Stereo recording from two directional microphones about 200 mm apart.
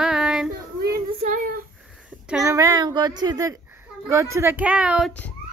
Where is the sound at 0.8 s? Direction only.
45° right (ahead or behind).